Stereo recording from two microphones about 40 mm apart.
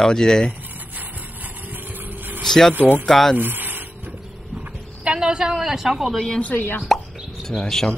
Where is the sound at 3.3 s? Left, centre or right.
Right.